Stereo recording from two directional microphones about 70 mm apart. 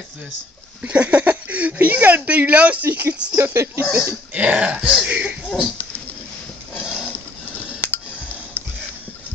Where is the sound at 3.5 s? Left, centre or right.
Right.